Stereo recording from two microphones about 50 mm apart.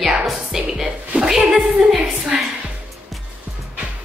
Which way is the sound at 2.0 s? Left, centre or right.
Centre.